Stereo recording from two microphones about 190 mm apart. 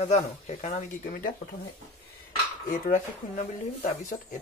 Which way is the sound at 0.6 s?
45° left (ahead or behind).